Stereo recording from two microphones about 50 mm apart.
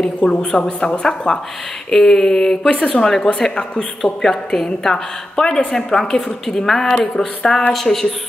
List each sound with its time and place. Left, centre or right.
0.0 s a woman's voice: centre